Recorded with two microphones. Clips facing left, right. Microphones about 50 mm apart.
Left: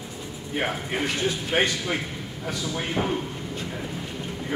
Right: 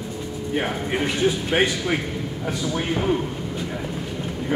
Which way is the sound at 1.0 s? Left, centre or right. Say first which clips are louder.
Right 5 dB; centre.